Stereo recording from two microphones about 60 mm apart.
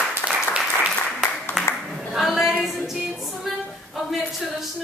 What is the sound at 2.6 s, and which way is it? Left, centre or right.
Music, centre.